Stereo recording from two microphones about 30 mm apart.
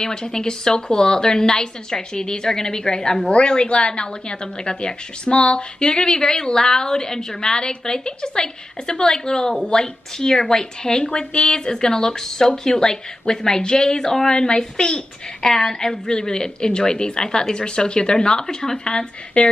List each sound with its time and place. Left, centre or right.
0.0 s a woman's voice: left
3.3 s a woman's voice: left
19.4 s a woman's voice: left